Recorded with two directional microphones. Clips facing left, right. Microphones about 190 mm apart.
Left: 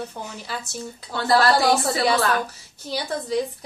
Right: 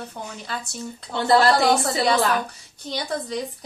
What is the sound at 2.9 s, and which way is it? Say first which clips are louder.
Speech: left 2 dB; 5° left (ahead or behind).